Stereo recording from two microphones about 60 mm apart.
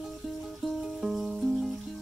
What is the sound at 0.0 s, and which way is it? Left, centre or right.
Music, centre.